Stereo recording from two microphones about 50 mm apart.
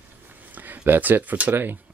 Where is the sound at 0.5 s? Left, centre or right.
Right.